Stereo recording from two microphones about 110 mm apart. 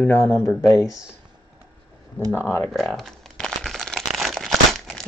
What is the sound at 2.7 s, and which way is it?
Crumpling, centre (ahead or behind).